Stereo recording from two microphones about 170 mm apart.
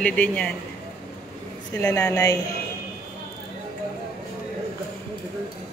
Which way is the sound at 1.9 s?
15° left (ahead or behind).